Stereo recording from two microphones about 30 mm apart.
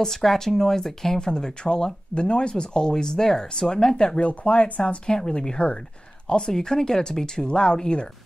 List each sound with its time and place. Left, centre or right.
0.0 s speech: centre
3.9 s speech: left
4.3 s speech: left